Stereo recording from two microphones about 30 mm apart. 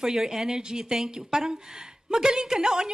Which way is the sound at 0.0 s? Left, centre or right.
Centre.